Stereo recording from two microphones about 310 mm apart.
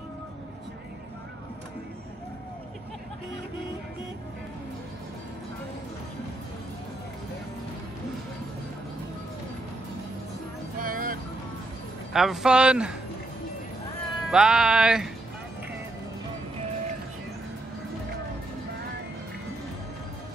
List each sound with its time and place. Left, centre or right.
10.8 s vehicle: right
12.1 s speech: centre
14.2 s speech: centre